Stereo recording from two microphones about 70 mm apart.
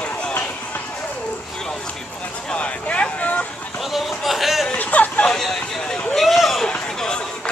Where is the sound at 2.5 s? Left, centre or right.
Centre.